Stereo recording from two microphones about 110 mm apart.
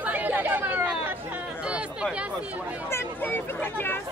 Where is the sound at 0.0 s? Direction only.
15° right (ahead or behind).